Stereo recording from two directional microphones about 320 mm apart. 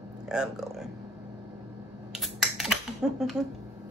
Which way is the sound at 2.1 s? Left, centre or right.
Centre.